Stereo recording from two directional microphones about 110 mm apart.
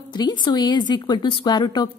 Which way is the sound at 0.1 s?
40° left (ahead or behind).